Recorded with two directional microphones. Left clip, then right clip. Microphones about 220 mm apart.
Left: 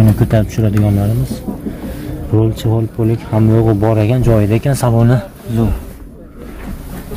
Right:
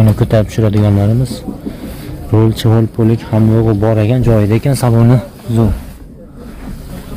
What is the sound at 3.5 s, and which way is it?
Speech, centre (ahead or behind).